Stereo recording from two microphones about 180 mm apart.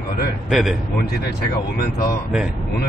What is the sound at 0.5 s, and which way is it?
Speech, centre (ahead or behind).